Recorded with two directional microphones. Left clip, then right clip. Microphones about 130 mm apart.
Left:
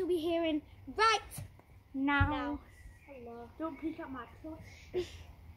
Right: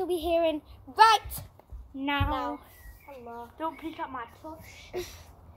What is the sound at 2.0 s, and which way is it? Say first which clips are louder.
Speech: right 2 dB; 65° left (ahead or behind).